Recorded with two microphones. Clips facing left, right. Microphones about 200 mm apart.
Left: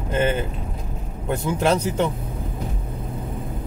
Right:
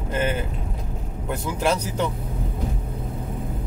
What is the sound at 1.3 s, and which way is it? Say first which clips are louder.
Speech: left 3 dB; 25° left (ahead or behind).